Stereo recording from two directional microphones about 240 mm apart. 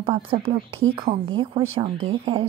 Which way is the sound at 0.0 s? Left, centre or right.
Right.